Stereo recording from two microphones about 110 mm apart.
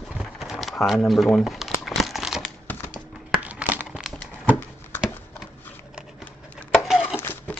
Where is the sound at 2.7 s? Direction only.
15° left (ahead or behind).